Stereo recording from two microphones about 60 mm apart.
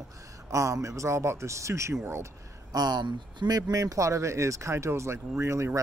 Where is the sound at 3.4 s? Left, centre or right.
Right.